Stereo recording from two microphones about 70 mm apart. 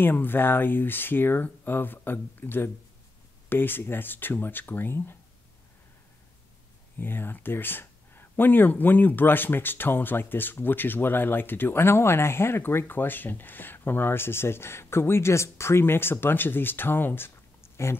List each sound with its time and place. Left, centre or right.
0.0 s speech: left
7.0 s speech: left